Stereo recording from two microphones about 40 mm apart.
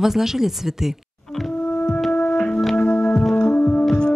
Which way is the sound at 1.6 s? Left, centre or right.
Left.